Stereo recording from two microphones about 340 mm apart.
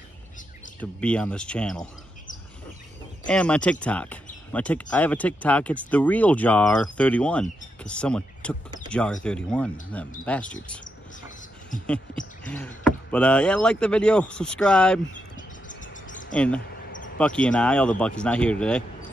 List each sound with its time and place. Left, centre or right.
0.7 s speech: centre
3.3 s speech: centre
10.8 s cricket: left
11.8 s speech: centre
15.3 s a sound: left
16.3 s speech: centre